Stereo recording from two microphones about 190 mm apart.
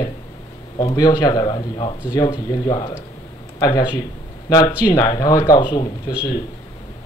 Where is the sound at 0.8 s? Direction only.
20° left (ahead or behind).